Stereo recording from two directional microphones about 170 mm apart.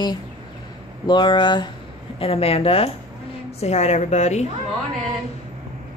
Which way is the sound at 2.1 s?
35° left (ahead or behind).